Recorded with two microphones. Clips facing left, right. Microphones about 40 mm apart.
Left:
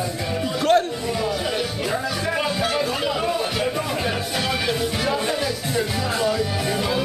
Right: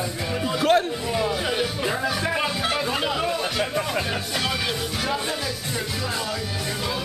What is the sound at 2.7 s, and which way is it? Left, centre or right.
Chatter, centre.